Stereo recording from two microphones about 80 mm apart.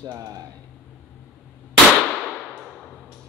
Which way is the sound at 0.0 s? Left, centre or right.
Right.